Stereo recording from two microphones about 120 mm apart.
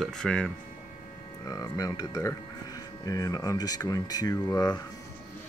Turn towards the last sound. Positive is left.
turn(degrees=30)  # may be behind; listen again after turning